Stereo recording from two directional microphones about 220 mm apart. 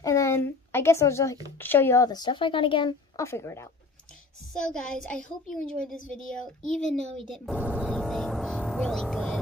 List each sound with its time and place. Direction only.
0.0 s a sound: 15° left (ahead or behind)
1.6 s a woman's voice: 10° left (ahead or behind)
4.6 s a woman's voice: 5° left (ahead or behind)